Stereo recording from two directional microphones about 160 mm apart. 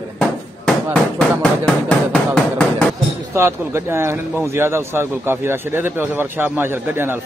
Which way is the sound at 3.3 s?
15° right (ahead or behind).